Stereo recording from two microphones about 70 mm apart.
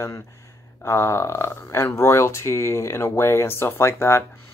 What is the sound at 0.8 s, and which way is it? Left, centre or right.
Speech, left.